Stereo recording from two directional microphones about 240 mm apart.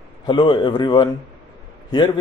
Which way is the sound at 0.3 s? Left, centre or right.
Centre.